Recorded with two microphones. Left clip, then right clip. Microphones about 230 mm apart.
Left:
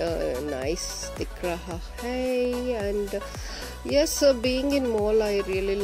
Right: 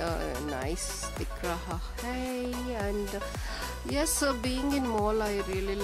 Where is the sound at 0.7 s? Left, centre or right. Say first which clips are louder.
Left 6 dB; right.